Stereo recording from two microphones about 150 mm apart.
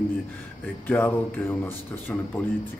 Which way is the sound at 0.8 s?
10° left (ahead or behind).